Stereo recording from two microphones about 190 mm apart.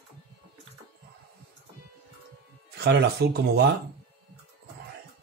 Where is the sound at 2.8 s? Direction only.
55° right (ahead or behind).